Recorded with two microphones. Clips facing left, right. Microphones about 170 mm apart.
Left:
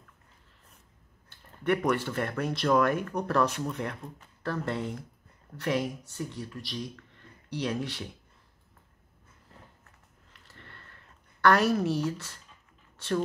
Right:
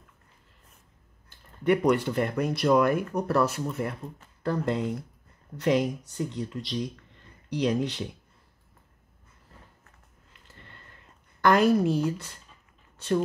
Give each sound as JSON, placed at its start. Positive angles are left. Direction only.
{"t": 1.6, "sound": "speech", "side_deg": -15}
{"t": 11.4, "sound": "speech", "side_deg": -15}